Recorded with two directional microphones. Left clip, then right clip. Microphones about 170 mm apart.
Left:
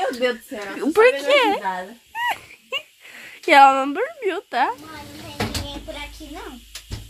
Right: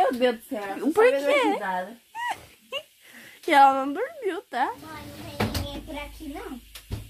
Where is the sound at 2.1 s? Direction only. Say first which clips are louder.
Left 9 dB; 15° left (ahead or behind).